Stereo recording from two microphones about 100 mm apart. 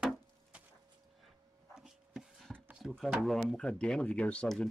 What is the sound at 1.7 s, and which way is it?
Dog, 5° right (ahead or behind).